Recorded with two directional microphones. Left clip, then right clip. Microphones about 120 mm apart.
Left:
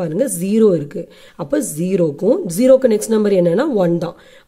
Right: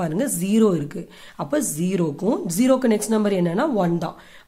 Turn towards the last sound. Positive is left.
turn(degrees=45)  # may be behind; listen again after turning